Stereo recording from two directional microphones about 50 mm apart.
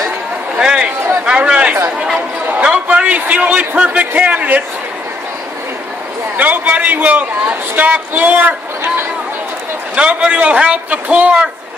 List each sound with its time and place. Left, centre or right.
0.6 s a man's voice: centre
6.3 s a man's voice: right
9.9 s a man's voice: right